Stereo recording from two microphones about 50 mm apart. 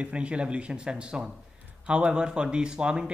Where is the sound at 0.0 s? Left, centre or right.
Right.